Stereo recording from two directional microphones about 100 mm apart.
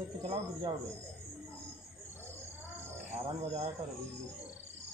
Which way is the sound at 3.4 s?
90° right.